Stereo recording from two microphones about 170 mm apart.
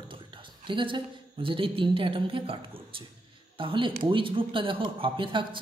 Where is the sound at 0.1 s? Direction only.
30° right (ahead or behind).